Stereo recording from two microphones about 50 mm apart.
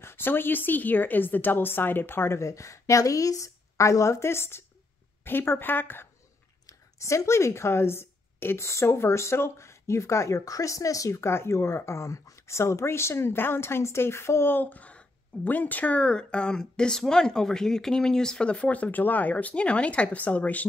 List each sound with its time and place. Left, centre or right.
0.0 s speech: left
2.4 s a woman's voice: left
6.6 s speech: left
14.5 s a woman's voice: left